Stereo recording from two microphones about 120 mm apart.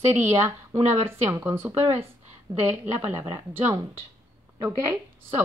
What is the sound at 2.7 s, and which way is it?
A woman's voice, 15° right (ahead or behind).